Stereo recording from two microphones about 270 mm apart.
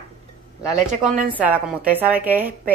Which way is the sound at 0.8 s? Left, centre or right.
Right.